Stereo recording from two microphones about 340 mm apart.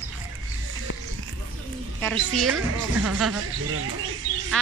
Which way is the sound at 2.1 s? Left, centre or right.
Right.